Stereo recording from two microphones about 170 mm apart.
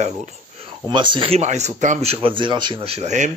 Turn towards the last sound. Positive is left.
turn(degrees=-40)  # may be behind; listen again after turning